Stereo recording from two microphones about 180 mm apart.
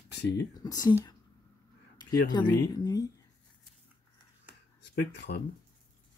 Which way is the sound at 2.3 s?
20° left (ahead or behind).